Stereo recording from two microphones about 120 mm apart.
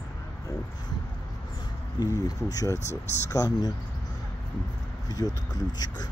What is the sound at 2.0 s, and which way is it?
Speech, 30° left (ahead or behind).